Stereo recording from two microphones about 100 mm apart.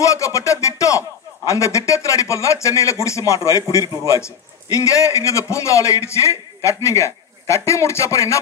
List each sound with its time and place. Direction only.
0.0 s music: 35° left (ahead or behind)
1.5 s a man's voice: 30° left (ahead or behind)